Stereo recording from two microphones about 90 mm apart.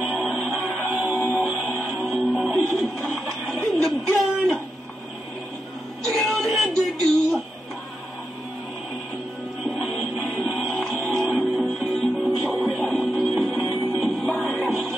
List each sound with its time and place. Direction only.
0.0 s music: centre (ahead or behind)
1.2 s music: 10° left (ahead or behind)
6.0 s a sound: centre (ahead or behind)
10.2 s music: 5° left (ahead or behind)